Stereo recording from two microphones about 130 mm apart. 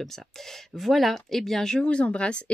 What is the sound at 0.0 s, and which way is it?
Speech, centre (ahead or behind).